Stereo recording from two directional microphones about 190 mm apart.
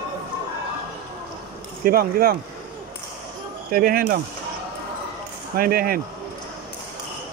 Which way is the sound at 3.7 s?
55° right (ahead or behind).